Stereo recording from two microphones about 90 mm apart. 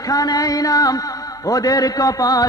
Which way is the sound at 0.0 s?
45° left (ahead or behind).